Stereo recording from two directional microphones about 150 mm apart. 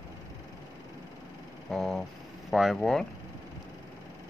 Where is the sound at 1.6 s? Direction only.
Centre (ahead or behind).